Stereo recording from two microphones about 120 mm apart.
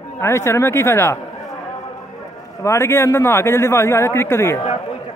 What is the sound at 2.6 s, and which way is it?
A man's voice, 25° left (ahead or behind).